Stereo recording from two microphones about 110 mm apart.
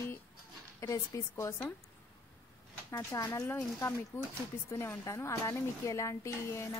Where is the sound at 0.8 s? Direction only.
30° left (ahead or behind).